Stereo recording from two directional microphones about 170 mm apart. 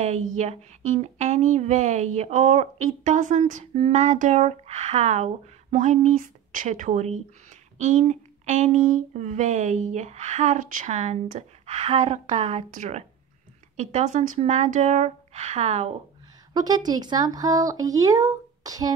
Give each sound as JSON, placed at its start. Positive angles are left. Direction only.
{"t": 0.0, "sound": "speech", "side_deg": -40}
{"t": 16.5, "sound": "speech", "side_deg": -25}